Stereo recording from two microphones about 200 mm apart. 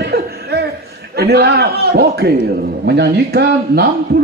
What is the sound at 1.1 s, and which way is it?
A man's voice, 55° right (ahead or behind).